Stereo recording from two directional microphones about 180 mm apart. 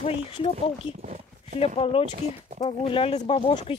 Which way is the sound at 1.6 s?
30° left (ahead or behind).